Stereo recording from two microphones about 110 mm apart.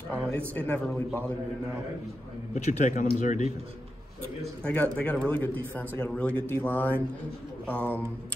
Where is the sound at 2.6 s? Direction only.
90° left.